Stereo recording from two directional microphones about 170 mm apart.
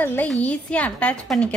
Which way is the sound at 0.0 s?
10° left (ahead or behind).